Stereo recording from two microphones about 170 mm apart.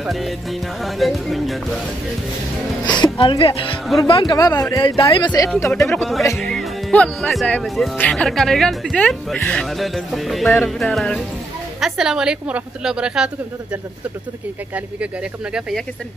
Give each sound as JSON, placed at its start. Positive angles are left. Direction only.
{"t": 0.0, "sound": "speech", "side_deg": 0}
{"t": 2.9, "sound": "speech", "side_deg": 25}
{"t": 4.1, "sound": "speech", "side_deg": 25}
{"t": 5.9, "sound": "speech", "side_deg": 0}